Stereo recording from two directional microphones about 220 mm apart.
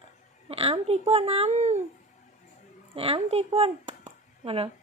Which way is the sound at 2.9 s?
25° right (ahead or behind).